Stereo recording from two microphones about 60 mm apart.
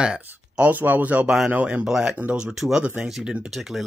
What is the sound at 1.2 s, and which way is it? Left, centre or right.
Speech, centre.